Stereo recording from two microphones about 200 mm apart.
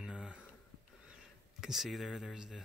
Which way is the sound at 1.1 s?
Centre (ahead or behind).